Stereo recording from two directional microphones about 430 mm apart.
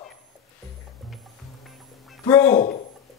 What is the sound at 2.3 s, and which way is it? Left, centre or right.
Speech, centre.